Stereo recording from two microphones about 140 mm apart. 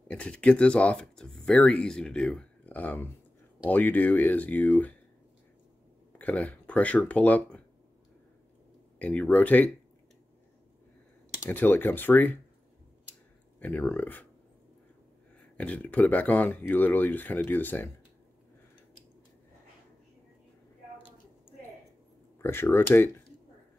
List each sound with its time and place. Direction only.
0.1 s speech: 10° left (ahead or behind)
6.1 s speech: 10° left (ahead or behind)
8.9 s speech: 10° left (ahead or behind)
11.4 s speech: 15° left (ahead or behind)
13.6 s speech: 10° left (ahead or behind)
15.5 s speech: 10° left (ahead or behind)
22.4 s speech: 15° left (ahead or behind)